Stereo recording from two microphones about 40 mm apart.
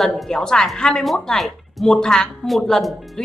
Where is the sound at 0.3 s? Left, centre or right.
Centre.